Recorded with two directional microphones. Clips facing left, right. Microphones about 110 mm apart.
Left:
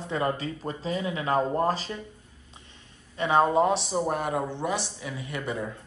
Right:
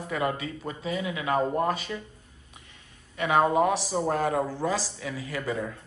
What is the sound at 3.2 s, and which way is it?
Speech, 25° left (ahead or behind).